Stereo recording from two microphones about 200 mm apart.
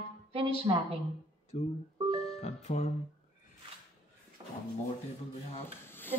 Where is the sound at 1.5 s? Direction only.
35° left (ahead or behind).